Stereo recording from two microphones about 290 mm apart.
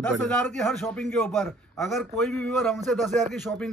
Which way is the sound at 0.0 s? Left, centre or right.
Centre.